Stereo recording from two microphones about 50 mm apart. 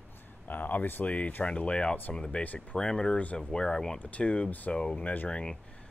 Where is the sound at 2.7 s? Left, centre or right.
Centre.